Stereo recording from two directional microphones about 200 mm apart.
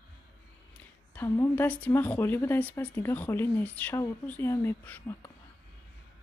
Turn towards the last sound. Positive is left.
turn(degrees=10)  # may be behind; listen again after turning